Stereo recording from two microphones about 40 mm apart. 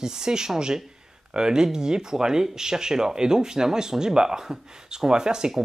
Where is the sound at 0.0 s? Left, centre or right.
Centre.